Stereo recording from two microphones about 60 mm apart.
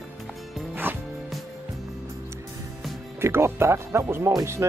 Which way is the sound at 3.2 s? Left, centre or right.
Right.